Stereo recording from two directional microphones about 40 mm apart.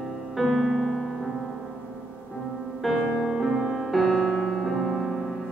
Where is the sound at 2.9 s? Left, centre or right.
Centre.